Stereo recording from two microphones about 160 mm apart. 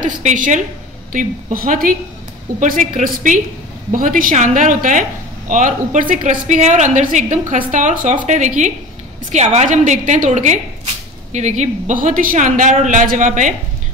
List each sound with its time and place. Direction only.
0.0 s a woman's voice: 55° right (ahead or behind)